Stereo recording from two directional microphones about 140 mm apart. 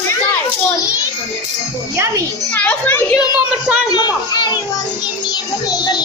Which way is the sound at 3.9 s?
30° left (ahead or behind).